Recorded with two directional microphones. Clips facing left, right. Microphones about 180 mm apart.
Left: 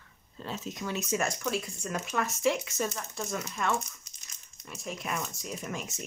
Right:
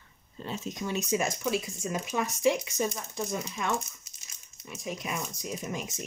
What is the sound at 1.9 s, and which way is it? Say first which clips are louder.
Speech: even; 10° right (ahead or behind).